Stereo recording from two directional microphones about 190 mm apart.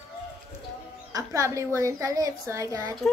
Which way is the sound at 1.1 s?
15° right (ahead or behind).